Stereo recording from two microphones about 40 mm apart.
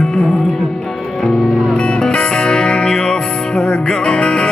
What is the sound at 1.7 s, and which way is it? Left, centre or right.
Music, centre.